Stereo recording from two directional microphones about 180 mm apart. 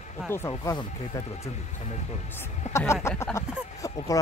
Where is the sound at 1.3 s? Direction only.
40° left (ahead or behind).